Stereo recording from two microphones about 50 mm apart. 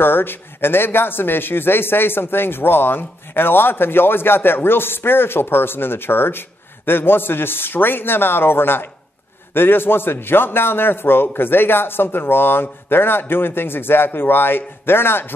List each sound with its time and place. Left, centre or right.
0.0 s speech: left